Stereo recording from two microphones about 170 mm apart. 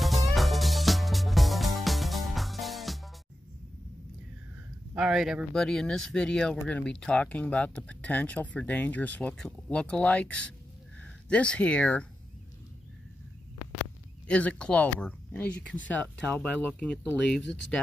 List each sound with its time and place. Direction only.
0.0 s music: centre (ahead or behind)
4.9 s speech: 5° right (ahead or behind)
14.2 s speech: 10° left (ahead or behind)
17.4 s speech: 90° left